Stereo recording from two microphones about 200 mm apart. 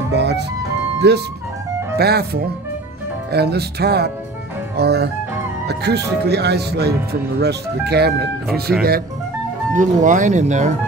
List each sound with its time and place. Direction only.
0.1 s music: 55° right (ahead or behind)
1.0 s speech: 55° right (ahead or behind)
8.7 s speech: 5° right (ahead or behind)
9.8 s speech: 40° right (ahead or behind)